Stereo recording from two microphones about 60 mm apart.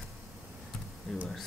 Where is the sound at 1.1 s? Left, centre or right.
Centre.